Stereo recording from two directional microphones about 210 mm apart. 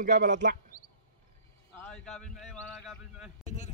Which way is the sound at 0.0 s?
40° right (ahead or behind).